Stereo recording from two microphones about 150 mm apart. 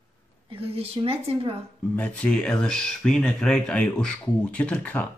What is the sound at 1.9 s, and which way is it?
Speech, 10° left (ahead or behind).